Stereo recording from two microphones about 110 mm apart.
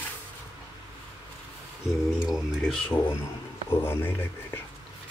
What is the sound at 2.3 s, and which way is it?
Speech, 5° right (ahead or behind).